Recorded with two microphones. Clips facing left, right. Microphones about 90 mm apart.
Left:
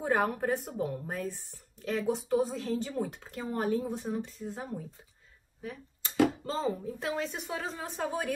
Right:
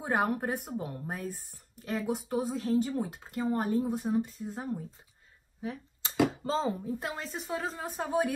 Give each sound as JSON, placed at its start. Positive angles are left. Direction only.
{"t": 0.0, "sound": "speech", "side_deg": -10}
{"t": 1.3, "sound": "speech", "side_deg": -50}
{"t": 1.8, "sound": "speech", "side_deg": -5}
{"t": 5.6, "sound": "speech", "side_deg": -25}
{"t": 6.9, "sound": "speech", "side_deg": 0}